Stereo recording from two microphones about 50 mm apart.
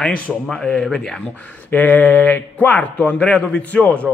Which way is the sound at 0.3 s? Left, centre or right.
Centre.